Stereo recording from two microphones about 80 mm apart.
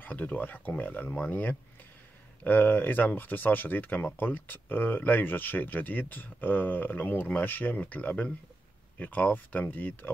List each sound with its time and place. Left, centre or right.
0.0 s speech: left